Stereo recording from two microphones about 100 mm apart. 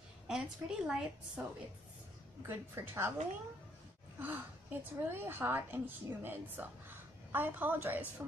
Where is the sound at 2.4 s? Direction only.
25° right (ahead or behind).